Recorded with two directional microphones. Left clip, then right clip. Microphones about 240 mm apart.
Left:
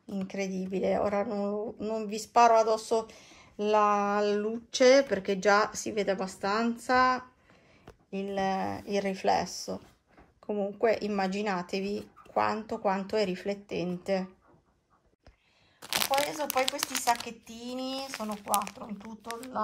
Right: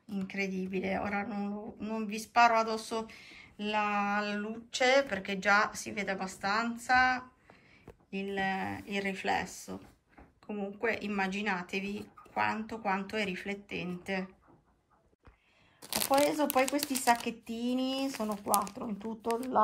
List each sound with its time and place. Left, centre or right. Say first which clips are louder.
0.1 s speech: left 1 dB; centre
10.4 s speech: left 6 dB; centre
16.1 s speech: right 5 dB; centre